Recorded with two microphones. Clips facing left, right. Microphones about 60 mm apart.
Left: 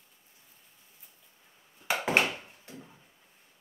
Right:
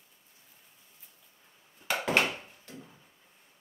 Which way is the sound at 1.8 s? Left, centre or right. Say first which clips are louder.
Left 1 dB; centre.